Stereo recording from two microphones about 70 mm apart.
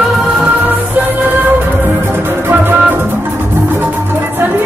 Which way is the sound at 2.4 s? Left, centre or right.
Right.